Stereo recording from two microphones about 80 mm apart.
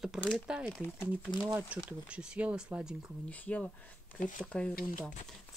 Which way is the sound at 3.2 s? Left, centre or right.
Centre.